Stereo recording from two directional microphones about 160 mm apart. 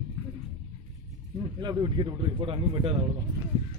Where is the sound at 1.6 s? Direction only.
25° right (ahead or behind).